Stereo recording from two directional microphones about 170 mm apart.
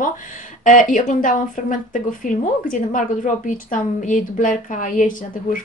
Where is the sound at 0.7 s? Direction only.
50° left (ahead or behind).